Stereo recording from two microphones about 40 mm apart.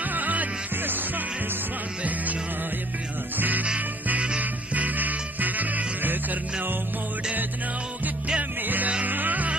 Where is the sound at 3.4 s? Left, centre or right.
Right.